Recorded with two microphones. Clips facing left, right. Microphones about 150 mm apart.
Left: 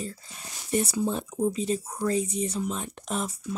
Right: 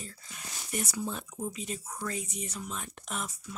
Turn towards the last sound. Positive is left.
turn(degrees=35)  # may be behind; listen again after turning